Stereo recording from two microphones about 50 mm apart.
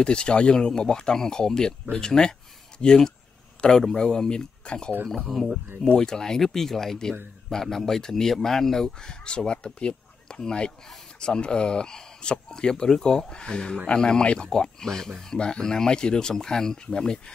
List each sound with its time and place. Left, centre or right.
0.0 s speech: centre
15.3 s speech: centre